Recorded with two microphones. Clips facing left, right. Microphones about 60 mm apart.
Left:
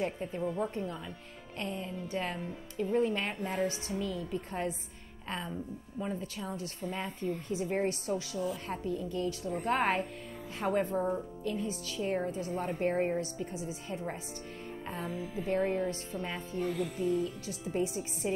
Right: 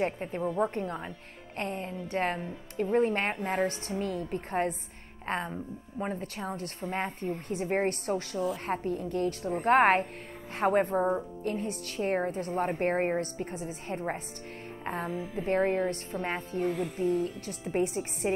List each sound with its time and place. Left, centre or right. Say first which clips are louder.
0.0 s a woman's voice: right 3 dB; right
17.0 s a woman's voice: right 4 dB; right